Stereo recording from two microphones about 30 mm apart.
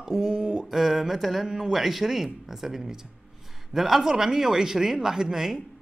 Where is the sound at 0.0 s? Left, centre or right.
Right.